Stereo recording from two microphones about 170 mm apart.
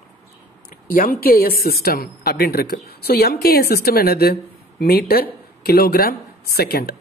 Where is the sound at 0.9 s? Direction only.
55° left (ahead or behind).